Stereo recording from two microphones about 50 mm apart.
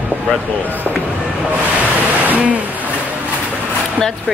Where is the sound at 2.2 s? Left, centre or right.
Right.